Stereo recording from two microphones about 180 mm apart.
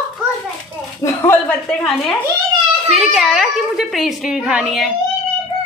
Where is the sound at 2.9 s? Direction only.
Centre (ahead or behind).